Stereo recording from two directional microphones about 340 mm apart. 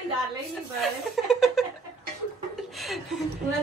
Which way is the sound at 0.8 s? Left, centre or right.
Centre.